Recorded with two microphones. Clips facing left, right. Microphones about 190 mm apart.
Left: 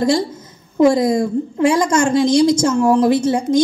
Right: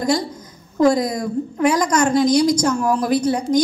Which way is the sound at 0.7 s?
25° left (ahead or behind).